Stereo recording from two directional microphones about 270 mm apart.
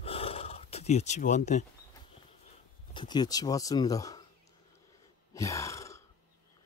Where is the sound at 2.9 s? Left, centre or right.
Centre.